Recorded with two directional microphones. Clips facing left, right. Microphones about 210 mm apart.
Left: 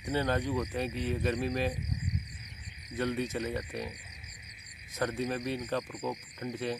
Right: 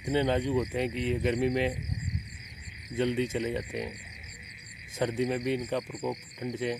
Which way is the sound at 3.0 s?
20° right (ahead or behind).